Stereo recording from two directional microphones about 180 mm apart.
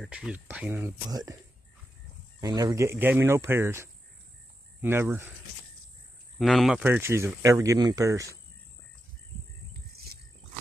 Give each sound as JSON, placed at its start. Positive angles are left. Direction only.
{"t": 0.0, "sound": "speech", "side_deg": -5}
{"t": 2.4, "sound": "speech", "side_deg": -20}
{"t": 6.3, "sound": "speech", "side_deg": 0}